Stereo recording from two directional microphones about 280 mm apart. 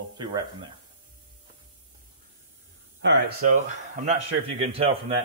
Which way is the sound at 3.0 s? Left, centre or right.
Right.